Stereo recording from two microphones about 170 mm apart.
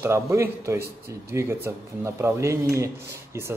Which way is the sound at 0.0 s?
15° right (ahead or behind).